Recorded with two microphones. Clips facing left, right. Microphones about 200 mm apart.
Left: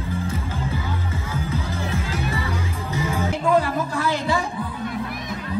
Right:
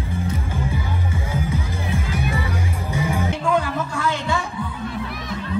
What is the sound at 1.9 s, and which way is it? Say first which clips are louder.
Music: right 4 dB; 30° left (ahead or behind).